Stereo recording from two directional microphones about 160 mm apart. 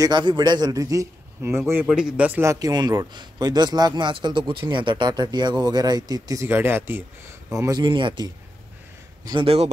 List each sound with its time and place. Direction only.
0.0 s a man's voice: 30° right (ahead or behind)